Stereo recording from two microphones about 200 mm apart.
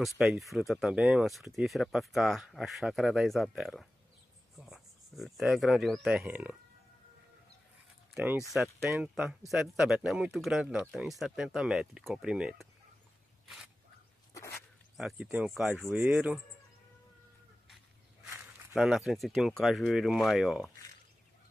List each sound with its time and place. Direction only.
0.0 s speech: centre (ahead or behind)
8.1 s speech: 10° right (ahead or behind)
14.3 s a sound: 15° left (ahead or behind)
15.0 s speech: centre (ahead or behind)
18.2 s a sound: 15° right (ahead or behind)
18.8 s speech: centre (ahead or behind)